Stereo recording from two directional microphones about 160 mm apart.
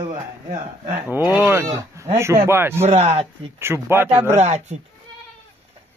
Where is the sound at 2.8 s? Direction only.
40° right (ahead or behind).